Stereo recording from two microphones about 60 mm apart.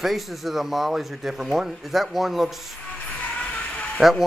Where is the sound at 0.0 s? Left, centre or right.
Centre.